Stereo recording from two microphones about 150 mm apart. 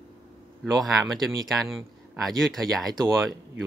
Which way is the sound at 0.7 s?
Centre (ahead or behind).